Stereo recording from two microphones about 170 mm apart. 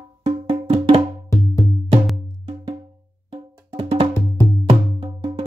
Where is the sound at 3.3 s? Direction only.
35° right (ahead or behind).